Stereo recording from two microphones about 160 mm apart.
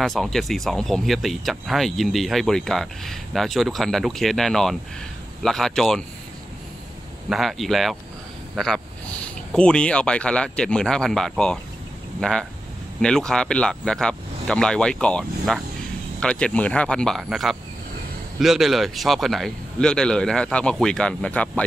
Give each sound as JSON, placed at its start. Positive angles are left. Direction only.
{"t": 0.0, "sound": "speech", "side_deg": 0}
{"t": 7.2, "sound": "speech", "side_deg": 0}